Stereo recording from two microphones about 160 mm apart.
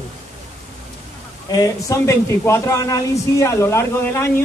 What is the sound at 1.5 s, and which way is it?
Speech, 20° left (ahead or behind).